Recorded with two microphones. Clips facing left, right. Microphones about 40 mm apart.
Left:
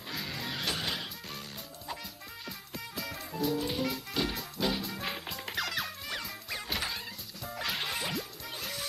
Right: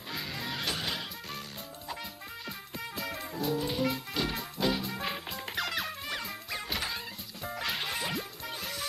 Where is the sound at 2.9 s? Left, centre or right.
Centre.